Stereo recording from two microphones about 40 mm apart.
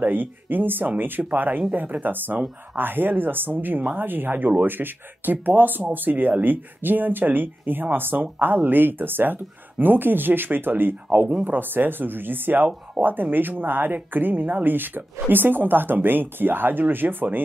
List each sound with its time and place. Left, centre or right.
0.0 s speech: right